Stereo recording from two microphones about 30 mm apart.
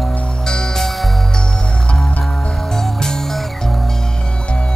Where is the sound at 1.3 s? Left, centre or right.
Left; by 4.0 s centre.